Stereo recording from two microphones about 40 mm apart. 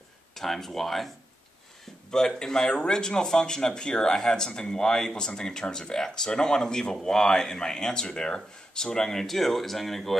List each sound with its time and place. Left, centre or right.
0.3 s speech: centre
2.0 s speech: centre